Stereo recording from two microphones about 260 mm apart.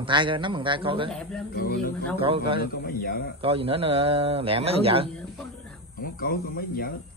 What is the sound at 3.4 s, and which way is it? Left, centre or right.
A man's voice, right.